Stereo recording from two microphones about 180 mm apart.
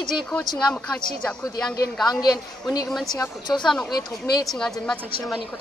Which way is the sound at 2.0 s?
20° left (ahead or behind).